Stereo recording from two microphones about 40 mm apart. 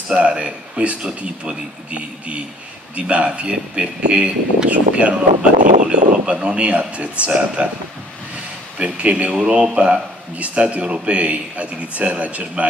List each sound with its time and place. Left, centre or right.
0.1 s a man's voice: right
8.7 s a man's voice: right